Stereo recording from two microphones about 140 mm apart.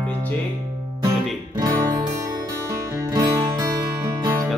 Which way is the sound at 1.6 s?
30° right (ahead or behind).